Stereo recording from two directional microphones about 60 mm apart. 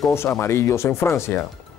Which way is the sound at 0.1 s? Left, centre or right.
Left.